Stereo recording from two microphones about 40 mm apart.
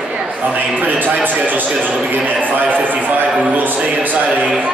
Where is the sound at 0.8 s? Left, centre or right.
Right.